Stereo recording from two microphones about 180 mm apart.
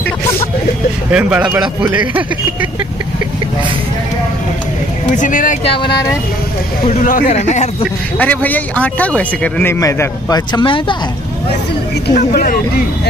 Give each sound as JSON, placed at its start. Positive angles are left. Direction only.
{"t": 1.1, "sound": "speech", "side_deg": -5}
{"t": 5.1, "sound": "speech", "side_deg": 45}
{"t": 6.9, "sound": "speech", "side_deg": 45}
{"t": 8.2, "sound": "speech", "side_deg": 10}
{"t": 12.1, "sound": "speech", "side_deg": 55}